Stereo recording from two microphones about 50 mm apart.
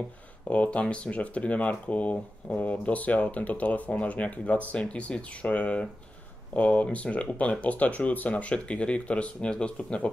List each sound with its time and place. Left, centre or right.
0.5 s speech: left